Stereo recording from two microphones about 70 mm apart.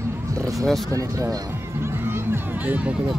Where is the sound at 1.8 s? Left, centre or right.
Right.